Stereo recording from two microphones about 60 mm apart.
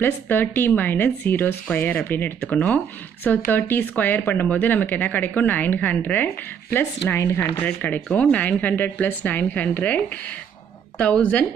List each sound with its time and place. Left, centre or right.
0.0 s speech: left
6.8 s speech: left
7.5 s speech: left